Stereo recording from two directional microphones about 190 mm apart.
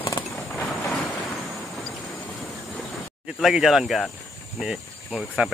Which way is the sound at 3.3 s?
Centre (ahead or behind).